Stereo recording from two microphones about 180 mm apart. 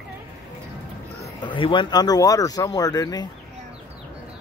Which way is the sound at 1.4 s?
25° left (ahead or behind).